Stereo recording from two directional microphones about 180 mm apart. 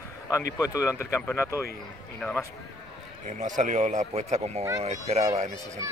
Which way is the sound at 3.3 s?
45° right (ahead or behind).